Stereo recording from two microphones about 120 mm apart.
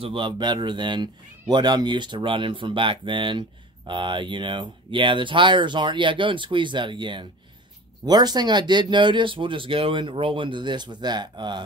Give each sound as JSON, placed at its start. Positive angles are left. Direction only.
{"t": 0.0, "sound": "a man's voice", "side_deg": -45}